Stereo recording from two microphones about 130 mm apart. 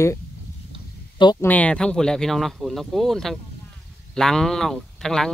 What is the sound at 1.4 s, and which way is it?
Speech, 10° left (ahead or behind).